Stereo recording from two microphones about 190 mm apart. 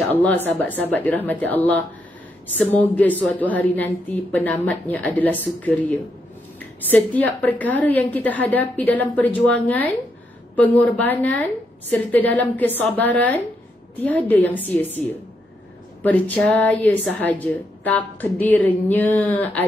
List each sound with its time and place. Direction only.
0.1 s a woman's voice: 10° left (ahead or behind)